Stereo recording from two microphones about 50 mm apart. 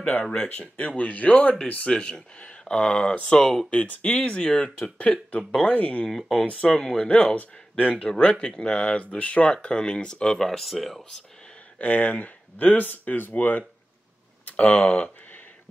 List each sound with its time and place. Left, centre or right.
0.2 s speech: left
1.9 s speech: centre
3.7 s speech: left
6.0 s speech: centre
6.4 s speech: centre
11.8 s speech: left
14.4 s a sound: left
14.9 s speech: left